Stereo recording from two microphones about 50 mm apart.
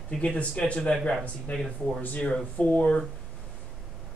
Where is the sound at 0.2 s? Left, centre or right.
Left.